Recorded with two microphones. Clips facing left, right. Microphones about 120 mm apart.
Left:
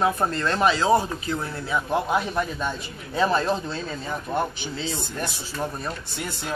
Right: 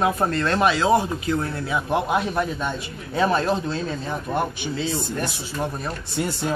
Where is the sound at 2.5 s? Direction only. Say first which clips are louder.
Right 1 dB; centre (ahead or behind).